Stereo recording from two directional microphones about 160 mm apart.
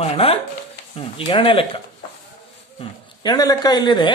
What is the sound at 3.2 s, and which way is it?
Speech, 25° left (ahead or behind).